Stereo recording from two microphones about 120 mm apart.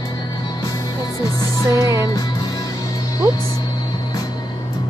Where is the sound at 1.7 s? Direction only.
30° right (ahead or behind).